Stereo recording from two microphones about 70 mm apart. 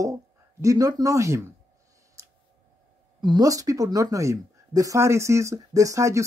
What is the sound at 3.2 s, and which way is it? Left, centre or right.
Speech, right.